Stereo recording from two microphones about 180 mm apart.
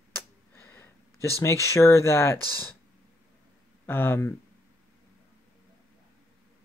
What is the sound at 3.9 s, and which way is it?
Speech, 15° left (ahead or behind).